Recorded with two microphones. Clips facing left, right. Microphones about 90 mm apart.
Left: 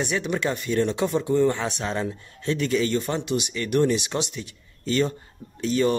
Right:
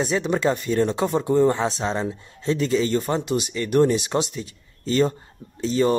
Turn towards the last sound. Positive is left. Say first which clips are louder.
# right 2 dB
turn(degrees=-30)  # may be behind; listen again after turning